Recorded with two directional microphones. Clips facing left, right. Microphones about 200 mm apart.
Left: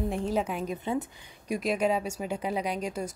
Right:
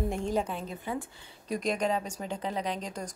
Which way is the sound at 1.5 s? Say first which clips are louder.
Left 2 dB; 5° left (ahead or behind).